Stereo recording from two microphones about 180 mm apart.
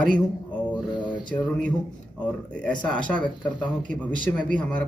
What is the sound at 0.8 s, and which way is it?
Speech, 25° left (ahead or behind).